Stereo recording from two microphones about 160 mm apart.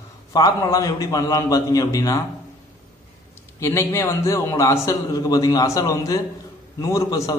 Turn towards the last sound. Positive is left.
turn(degrees=20)  # may be behind; listen again after turning